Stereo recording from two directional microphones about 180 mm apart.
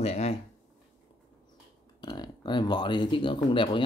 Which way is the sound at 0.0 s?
35° left (ahead or behind).